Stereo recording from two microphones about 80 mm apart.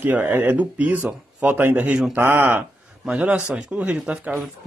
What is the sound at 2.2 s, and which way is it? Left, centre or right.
Speech, right.